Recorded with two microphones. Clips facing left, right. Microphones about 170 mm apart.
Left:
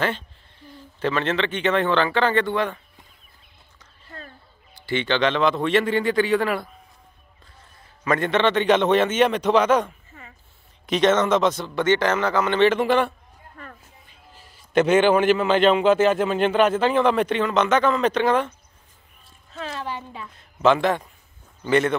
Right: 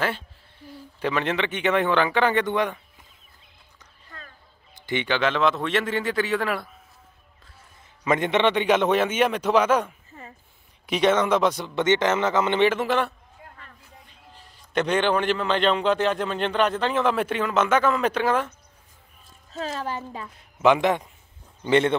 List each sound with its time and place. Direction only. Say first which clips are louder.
0.7 s speech: left 2 dB; 10° right (ahead or behind)
4.7 s a man's voice: left 2 dB; 15° right (ahead or behind); by 6.7 s centre (ahead or behind)
8.0 s speech: left 1 dB; 15° right (ahead or behind)
12.6 s a man's voice: left 3 dB; centre (ahead or behind)
19.5 s speech: right 1 dB; 40° right (ahead or behind)
20.3 s a man's voice: left 1 dB; 15° right (ahead or behind)